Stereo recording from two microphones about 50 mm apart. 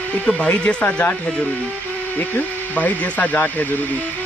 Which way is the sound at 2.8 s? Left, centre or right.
Left.